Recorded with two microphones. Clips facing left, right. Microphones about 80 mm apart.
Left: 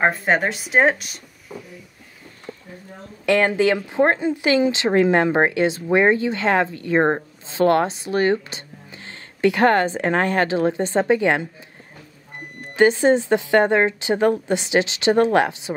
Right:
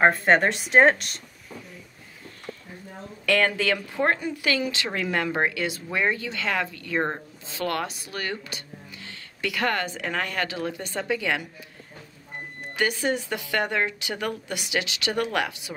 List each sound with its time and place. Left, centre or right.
0.0 s speech: centre
3.3 s speech: left
12.7 s speech: left